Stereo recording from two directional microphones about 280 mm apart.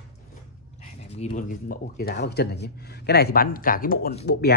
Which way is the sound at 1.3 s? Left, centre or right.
Left.